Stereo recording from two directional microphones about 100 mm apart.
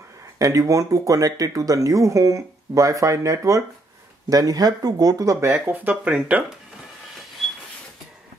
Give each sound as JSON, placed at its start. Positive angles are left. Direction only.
{"t": 0.4, "sound": "speech", "side_deg": -35}
{"t": 5.7, "sound": "speech", "side_deg": -15}